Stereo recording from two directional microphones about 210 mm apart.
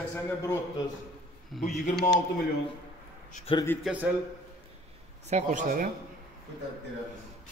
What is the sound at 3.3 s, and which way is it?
Speech, 25° left (ahead or behind).